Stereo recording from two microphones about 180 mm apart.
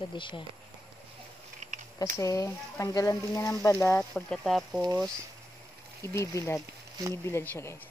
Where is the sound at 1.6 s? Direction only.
40° right (ahead or behind).